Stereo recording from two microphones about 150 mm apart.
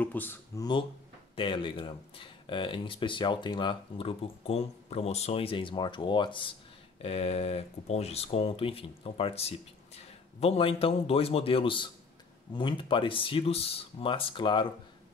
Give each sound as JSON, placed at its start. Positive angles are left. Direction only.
{"t": 0.0, "sound": "speech", "side_deg": 10}
{"t": 0.6, "sound": "speech", "side_deg": 30}